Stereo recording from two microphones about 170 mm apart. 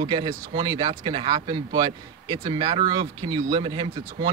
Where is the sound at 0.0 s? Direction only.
30° right (ahead or behind).